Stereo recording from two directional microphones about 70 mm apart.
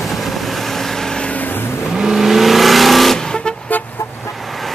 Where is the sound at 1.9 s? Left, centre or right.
Centre.